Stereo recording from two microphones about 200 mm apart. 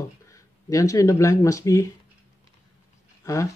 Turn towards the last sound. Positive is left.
turn(degrees=15)  # may be behind; listen again after turning